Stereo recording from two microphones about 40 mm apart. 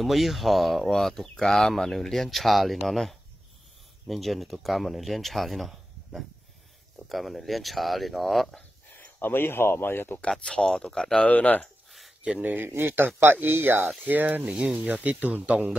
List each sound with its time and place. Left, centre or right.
0.0 s speech: centre
8.9 s speech: left
10.6 s speech: centre
11.2 s speech: left
12.4 s speech: right
12.6 s speech: right
14.4 s speech: right
15.0 s speech: right